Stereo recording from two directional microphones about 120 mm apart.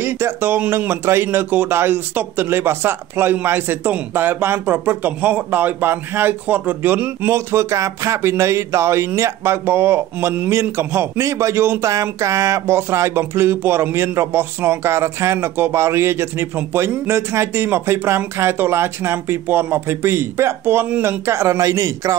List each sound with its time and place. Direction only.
0.0 s speech: 20° right (ahead or behind)